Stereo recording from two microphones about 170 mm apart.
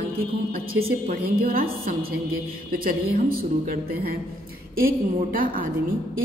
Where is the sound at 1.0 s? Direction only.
60° right (ahead or behind).